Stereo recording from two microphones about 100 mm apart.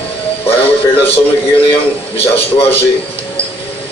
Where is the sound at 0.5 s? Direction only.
65° left (ahead or behind).